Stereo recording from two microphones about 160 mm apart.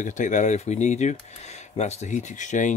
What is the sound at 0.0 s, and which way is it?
Speech, 50° left (ahead or behind).